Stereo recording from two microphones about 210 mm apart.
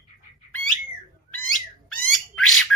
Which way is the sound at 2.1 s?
Centre (ahead or behind).